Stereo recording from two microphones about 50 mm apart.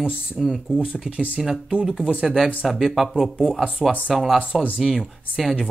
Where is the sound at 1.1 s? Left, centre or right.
Centre.